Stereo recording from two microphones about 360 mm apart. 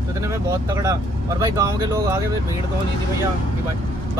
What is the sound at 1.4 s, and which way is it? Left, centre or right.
Speech, centre.